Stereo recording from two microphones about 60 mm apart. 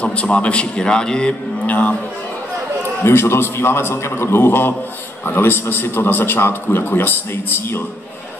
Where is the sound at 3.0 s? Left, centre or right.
Left.